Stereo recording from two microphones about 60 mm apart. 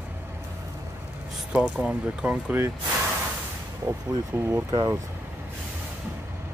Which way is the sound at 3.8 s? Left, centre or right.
Right.